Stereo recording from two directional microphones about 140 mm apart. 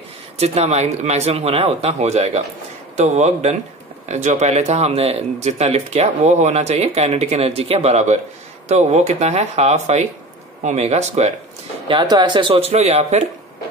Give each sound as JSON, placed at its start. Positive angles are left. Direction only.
{"t": 0.4, "sound": "speech", "side_deg": -50}
{"t": 11.9, "sound": "speech", "side_deg": -35}